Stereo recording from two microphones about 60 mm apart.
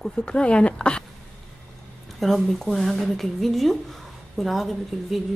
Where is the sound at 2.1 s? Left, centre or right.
Centre.